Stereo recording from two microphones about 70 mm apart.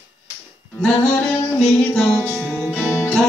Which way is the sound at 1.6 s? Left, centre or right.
Centre.